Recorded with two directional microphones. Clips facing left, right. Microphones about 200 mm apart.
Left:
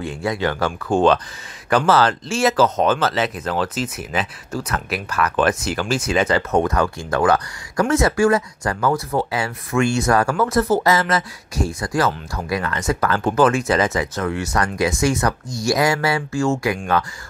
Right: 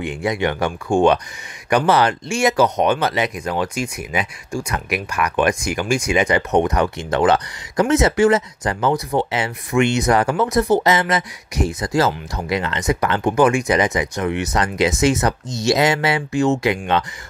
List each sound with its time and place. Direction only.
0.0 s speech: 15° right (ahead or behind)